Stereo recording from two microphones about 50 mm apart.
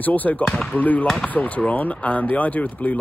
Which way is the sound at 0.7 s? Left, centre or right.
Left.